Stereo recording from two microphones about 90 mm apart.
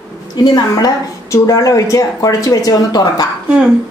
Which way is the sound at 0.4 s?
50° left (ahead or behind).